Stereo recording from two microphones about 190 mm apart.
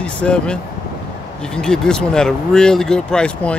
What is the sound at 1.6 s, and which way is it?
Speech, 5° left (ahead or behind).